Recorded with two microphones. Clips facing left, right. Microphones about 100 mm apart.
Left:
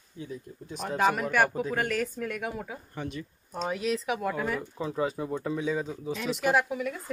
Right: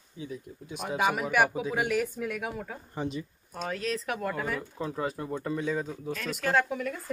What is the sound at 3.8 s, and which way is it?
Speech, 5° left (ahead or behind).